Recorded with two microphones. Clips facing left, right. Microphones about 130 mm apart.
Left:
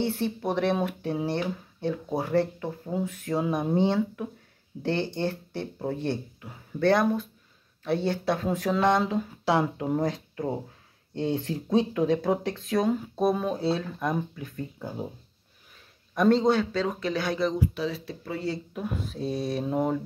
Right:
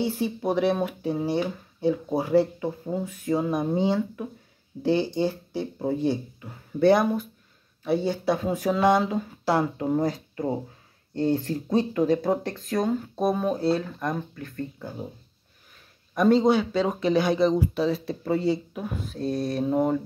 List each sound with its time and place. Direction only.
0.0 s speech: 5° right (ahead or behind)
16.2 s a man's voice: 5° right (ahead or behind)
16.8 s speech: 20° right (ahead or behind)
17.6 s speech: 35° right (ahead or behind)
18.7 s speech: centre (ahead or behind)